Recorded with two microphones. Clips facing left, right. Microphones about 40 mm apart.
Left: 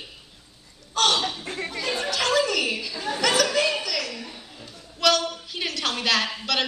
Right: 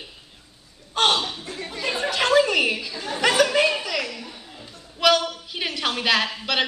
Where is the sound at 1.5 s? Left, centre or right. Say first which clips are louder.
Left 2 dB; left.